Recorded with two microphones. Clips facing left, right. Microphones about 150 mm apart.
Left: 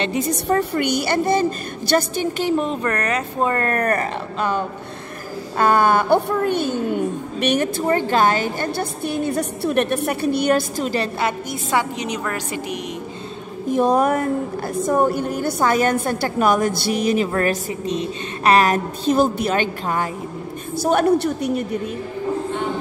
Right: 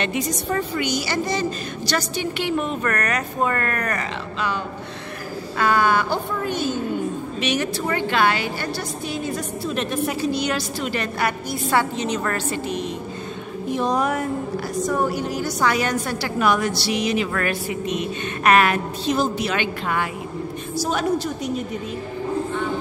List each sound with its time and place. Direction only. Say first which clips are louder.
0.6 s a woman's voice: left 4 dB; 60° left (ahead or behind); by 3.8 s 30° left (ahead or behind)
3.8 s a woman's voice: left 6 dB; 50° left (ahead or behind)
10.8 s a woman's voice: left 4 dB; 40° left (ahead or behind)
11.1 s a woman's voice: left 1 dB; 20° left (ahead or behind)
13.7 s a woman's voice: left 5 dB; 50° left (ahead or behind)
17.3 s a woman's voice: left 4 dB; 35° left (ahead or behind)
20.7 s a woman's voice: left 6 dB; 55° left (ahead or behind)